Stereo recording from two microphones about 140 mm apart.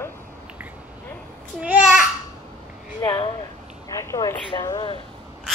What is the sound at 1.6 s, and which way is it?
Speech, 5° right (ahead or behind).